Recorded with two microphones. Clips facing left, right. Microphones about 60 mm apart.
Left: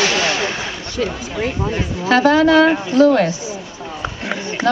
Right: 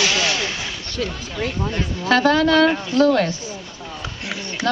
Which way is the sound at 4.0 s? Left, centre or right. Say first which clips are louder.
Left 7 dB; left.